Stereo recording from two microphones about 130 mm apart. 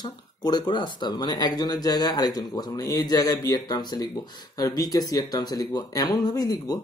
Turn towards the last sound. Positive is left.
turn(degrees=30)  # may be behind; listen again after turning